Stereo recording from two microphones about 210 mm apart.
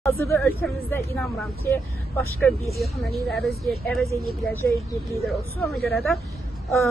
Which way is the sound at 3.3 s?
Centre (ahead or behind).